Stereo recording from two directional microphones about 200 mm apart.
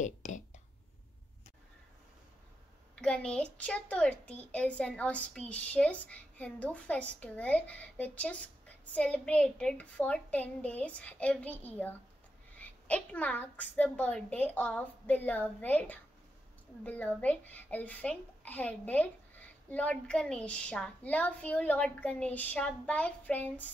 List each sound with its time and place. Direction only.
0.0 s whispering: 40° left (ahead or behind)
3.0 s a woman's voice: 5° left (ahead or behind)